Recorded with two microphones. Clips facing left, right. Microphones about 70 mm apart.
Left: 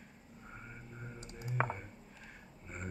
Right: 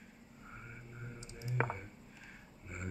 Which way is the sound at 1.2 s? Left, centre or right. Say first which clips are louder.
Left 2 dB; left.